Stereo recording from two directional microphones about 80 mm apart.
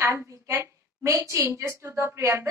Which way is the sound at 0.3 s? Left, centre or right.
Right.